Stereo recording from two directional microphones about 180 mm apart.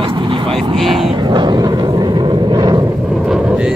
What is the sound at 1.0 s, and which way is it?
Vehicle, 30° right (ahead or behind).